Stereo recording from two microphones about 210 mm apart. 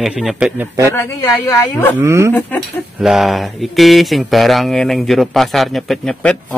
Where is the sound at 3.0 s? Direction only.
Centre (ahead or behind).